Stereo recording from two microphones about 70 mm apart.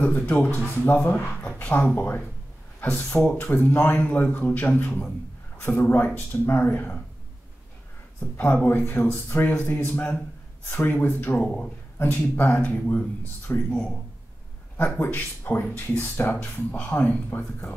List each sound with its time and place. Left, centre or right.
0.0 s speech: left
1.6 s a sound: left
2.0 s speech: left
8.2 s speech: left
13.7 s speech: centre
15.0 s a man's voice: left